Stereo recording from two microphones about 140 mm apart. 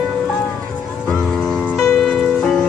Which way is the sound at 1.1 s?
5° left (ahead or behind).